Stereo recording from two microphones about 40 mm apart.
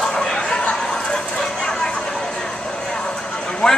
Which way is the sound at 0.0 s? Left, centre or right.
Centre.